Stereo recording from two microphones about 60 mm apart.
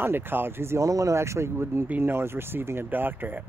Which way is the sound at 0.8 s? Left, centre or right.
Right.